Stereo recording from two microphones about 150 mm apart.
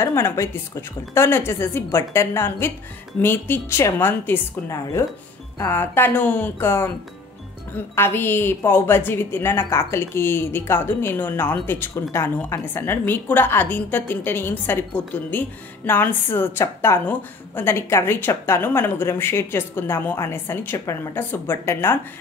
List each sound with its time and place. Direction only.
0.0 s a woman's voice: 20° left (ahead or behind)